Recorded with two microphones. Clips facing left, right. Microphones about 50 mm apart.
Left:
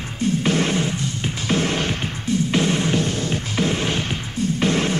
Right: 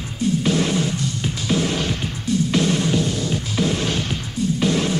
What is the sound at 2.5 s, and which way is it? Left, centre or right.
Music, left.